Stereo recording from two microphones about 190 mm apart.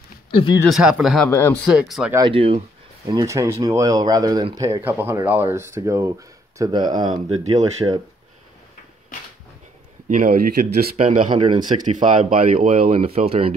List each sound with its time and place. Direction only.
0.3 s speech: 30° left (ahead or behind)
0.7 s speech: 5° right (ahead or behind)
1.7 s speech: 5° right (ahead or behind)
2.1 s speech: 25° right (ahead or behind)
3.1 s speech: 20° right (ahead or behind)
10.0 s speech: 45° right (ahead or behind)
11.1 s speech: 35° right (ahead or behind)
11.8 s speech: 40° right (ahead or behind)
12.9 s speech: 30° right (ahead or behind)